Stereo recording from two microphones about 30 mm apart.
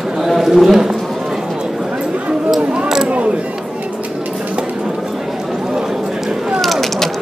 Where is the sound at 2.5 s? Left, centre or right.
Centre.